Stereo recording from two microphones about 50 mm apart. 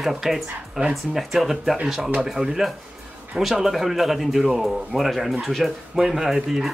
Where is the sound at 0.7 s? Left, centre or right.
Centre.